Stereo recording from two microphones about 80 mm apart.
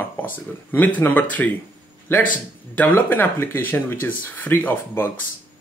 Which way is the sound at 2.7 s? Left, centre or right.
Left.